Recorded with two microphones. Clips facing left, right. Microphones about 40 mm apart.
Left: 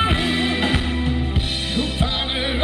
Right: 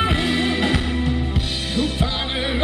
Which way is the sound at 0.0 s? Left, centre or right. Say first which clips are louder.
Even; centre.